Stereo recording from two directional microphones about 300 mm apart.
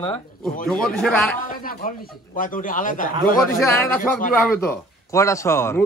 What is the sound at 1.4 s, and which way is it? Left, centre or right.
Speech, left.